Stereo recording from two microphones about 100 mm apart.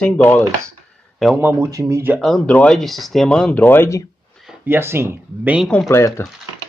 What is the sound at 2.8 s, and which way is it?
Speech, centre (ahead or behind).